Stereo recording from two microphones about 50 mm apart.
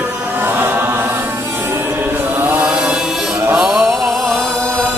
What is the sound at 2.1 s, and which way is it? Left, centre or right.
Mantra, right.